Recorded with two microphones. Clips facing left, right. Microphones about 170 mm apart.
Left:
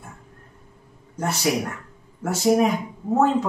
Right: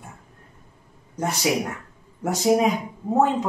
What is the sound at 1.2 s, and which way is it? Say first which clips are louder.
Speech: even; 15° right (ahead or behind).